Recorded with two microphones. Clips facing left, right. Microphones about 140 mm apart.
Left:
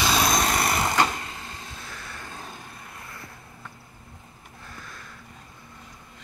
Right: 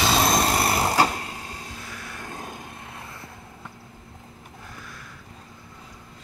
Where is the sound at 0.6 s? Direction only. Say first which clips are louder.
Right 2 dB; 35° right (ahead or behind).